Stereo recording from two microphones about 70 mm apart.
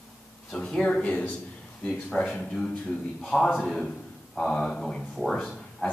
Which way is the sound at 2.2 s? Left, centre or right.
Centre.